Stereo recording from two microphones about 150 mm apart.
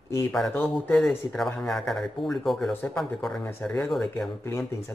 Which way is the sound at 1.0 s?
Centre (ahead or behind).